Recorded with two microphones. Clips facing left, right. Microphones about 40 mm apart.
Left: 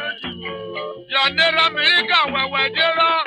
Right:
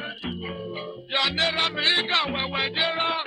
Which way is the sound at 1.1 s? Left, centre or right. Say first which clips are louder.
Left 7 dB; left.